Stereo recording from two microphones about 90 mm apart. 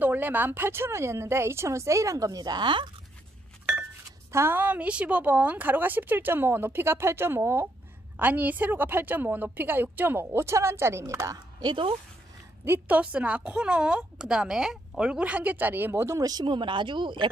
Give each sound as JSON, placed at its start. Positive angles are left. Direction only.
{"t": 0.0, "sound": "speech", "side_deg": -20}
{"t": 4.3, "sound": "a woman's voice", "side_deg": -25}
{"t": 11.6, "sound": "speech", "side_deg": -65}
{"t": 12.6, "sound": "a woman's voice", "side_deg": -20}
{"t": 16.2, "sound": "speech", "side_deg": -50}